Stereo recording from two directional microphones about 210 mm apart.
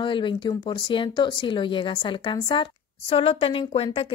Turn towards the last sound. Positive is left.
turn(degrees=25)  # may be behind; listen again after turning